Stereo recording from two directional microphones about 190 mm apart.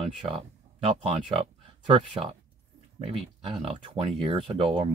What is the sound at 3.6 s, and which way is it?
Speech, 30° right (ahead or behind).